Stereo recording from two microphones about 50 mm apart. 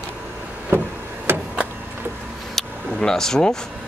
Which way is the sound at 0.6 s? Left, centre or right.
Right.